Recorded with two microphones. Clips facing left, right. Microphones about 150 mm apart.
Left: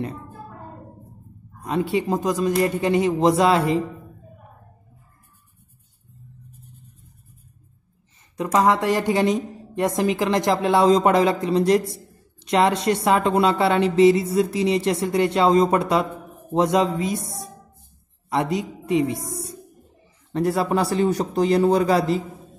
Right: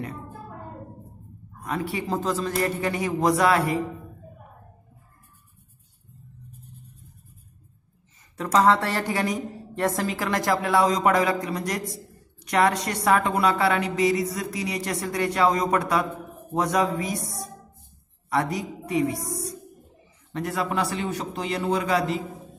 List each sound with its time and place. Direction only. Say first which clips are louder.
1.6 s a woman's voice: left 6 dB; 25° left (ahead or behind)
8.4 s a woman's voice: left 1 dB; 15° left (ahead or behind)
20.3 s a man's voice: left 6 dB; 35° left (ahead or behind)